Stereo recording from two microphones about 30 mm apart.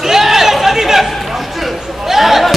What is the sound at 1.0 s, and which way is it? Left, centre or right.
Chatter, centre.